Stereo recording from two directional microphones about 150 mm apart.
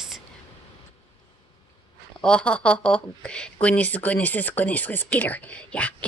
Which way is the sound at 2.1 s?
5° left (ahead or behind).